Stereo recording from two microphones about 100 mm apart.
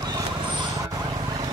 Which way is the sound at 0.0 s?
40° right (ahead or behind).